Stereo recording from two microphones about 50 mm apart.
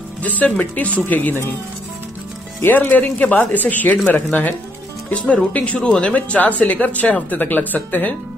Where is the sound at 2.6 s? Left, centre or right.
Left.